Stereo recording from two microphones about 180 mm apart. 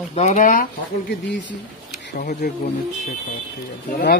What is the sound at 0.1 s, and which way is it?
Speech, 40° left (ahead or behind).